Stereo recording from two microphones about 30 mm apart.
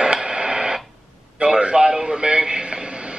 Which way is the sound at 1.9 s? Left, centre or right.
Right.